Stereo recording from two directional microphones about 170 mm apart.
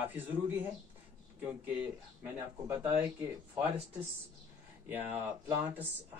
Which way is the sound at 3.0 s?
10° right (ahead or behind).